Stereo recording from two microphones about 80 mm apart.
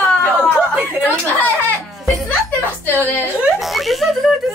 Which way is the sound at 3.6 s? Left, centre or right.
Centre.